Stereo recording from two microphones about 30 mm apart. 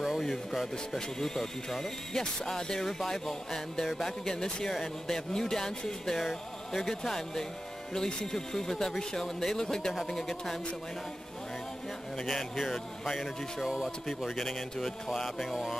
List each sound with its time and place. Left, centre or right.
0.9 s speech: centre
6.1 s speech: centre
12.3 s speech: centre
13.7 s speech: centre
14.4 s speech: centre